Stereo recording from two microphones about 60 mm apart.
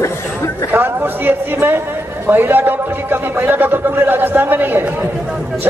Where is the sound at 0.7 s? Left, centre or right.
Right.